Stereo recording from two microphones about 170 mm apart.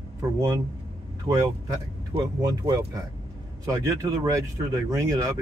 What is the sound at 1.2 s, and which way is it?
Speech, 15° right (ahead or behind).